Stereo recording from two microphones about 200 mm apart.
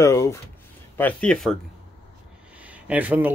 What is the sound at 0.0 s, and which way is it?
Speech, 15° left (ahead or behind).